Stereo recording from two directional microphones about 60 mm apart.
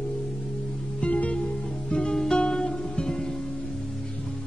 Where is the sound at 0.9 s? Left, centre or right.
Left.